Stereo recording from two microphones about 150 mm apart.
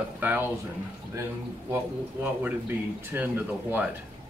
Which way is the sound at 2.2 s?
10° right (ahead or behind).